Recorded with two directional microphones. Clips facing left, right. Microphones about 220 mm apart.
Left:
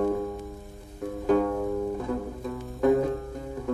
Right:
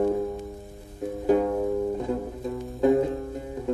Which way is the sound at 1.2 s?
20° right (ahead or behind).